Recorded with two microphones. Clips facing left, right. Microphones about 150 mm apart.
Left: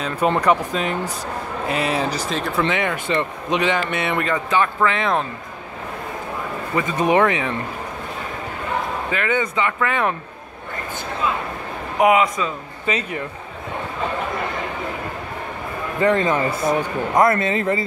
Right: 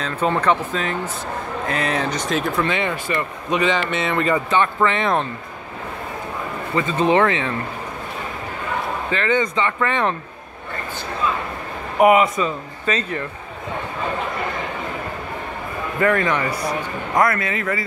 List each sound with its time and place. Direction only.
0.0 s speech: 10° left (ahead or behind)
2.6 s speech: 15° left (ahead or behind)
3.9 s speech: 10° left (ahead or behind)
6.7 s speech: 15° left (ahead or behind)
9.1 s speech: 10° left (ahead or behind)
12.0 s speech: centre (ahead or behind)
12.8 s speech: 10° left (ahead or behind)
16.0 s speech: 20° left (ahead or behind)